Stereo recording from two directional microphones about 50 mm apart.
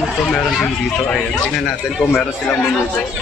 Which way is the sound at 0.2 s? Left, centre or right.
Centre.